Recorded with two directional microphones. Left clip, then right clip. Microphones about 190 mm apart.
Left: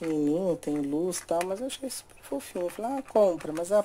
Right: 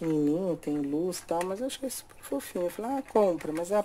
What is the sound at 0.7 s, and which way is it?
Speech, 25° left (ahead or behind).